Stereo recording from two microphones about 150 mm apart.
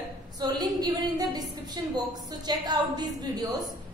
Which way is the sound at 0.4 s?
25° right (ahead or behind).